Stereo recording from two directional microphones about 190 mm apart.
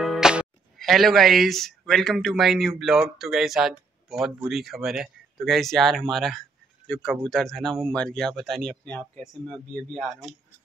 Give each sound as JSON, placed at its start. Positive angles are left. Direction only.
{"t": 0.0, "sound": "speech", "side_deg": 0}